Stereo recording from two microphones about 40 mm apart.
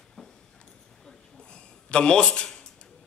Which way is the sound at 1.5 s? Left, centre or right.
Left.